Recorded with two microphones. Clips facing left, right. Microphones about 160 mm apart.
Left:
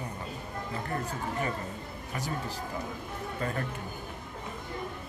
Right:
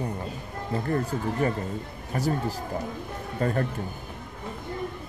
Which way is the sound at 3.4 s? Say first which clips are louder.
Right 8 dB; 35° right (ahead or behind).